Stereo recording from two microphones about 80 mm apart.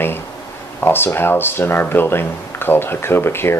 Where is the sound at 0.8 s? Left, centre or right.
Left.